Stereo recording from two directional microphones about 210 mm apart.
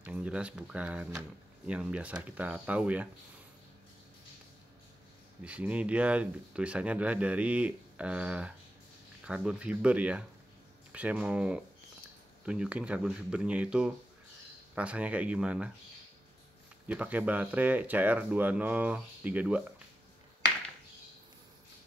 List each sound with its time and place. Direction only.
0.0 s speech: 5° right (ahead or behind)
5.4 s speech: 5° right (ahead or behind)
16.8 s speech: 5° right (ahead or behind)